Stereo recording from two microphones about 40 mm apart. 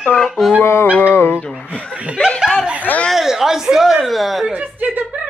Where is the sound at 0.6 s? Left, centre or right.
Left.